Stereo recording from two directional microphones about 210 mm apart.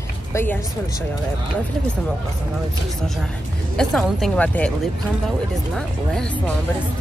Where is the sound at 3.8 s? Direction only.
Centre (ahead or behind).